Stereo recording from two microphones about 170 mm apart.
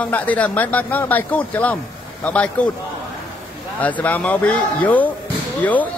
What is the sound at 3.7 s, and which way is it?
A man's voice, 10° left (ahead or behind).